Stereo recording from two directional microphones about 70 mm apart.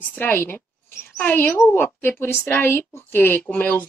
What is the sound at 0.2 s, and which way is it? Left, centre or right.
Speech, left.